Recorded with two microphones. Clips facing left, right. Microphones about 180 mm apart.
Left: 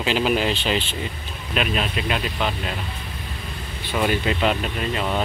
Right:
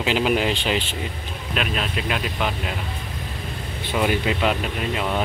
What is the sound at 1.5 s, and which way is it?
Speech, centre (ahead or behind).